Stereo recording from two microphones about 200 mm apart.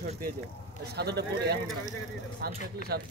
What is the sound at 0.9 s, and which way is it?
Speech, 55° right (ahead or behind).